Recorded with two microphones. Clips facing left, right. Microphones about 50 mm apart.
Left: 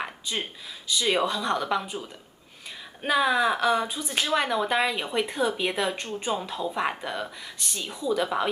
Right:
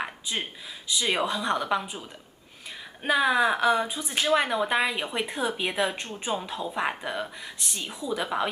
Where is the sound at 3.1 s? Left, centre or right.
Centre.